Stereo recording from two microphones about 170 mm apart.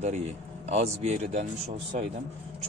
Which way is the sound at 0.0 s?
40° right (ahead or behind).